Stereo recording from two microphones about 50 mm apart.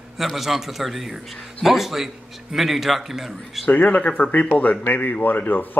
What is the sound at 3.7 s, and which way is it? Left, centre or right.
Speech, left.